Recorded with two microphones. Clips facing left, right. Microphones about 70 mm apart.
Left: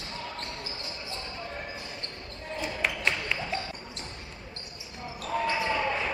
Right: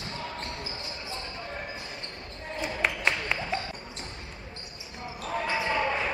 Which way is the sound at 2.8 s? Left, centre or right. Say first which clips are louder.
Right 2 dB; right.